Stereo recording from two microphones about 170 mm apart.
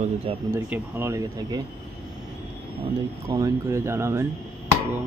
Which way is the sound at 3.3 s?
20° right (ahead or behind).